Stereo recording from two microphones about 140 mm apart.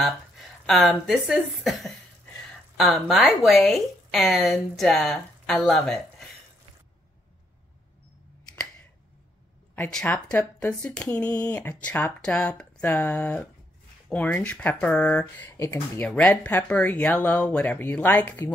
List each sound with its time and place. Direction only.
0.7 s a woman's voice: centre (ahead or behind)
9.8 s speech: 10° left (ahead or behind)
15.5 s speech: 20° left (ahead or behind)
16.0 s speech: 10° left (ahead or behind)